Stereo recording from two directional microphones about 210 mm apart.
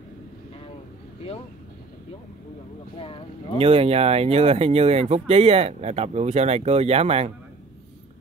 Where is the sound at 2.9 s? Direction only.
25° left (ahead or behind).